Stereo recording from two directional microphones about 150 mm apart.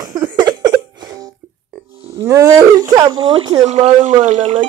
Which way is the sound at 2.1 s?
20° right (ahead or behind).